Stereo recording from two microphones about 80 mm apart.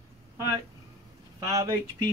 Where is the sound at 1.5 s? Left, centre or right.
Right.